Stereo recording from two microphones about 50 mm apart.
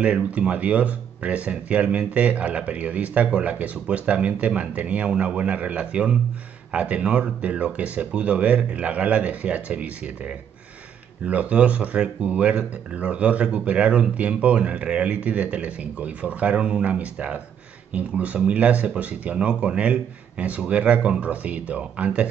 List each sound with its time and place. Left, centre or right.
0.0 s speech: right